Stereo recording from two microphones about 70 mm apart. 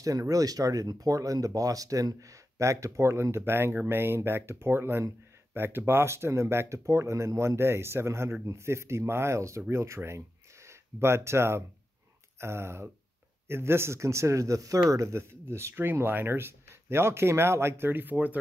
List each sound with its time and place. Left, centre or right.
0.0 s speech: right